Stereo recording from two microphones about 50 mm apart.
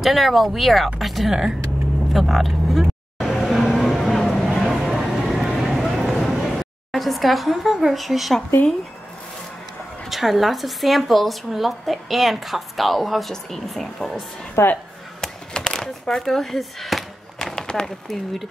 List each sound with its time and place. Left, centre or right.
0.0 s a woman's voice: centre
1.3 s speech: centre
2.1 s a woman's voice: centre
2.8 s vehicle: centre
3.7 s a sound: centre
10.0 s a woman's voice: centre
14.6 s speech: left
15.1 s a sound: centre
18.1 s a woman's voice: centre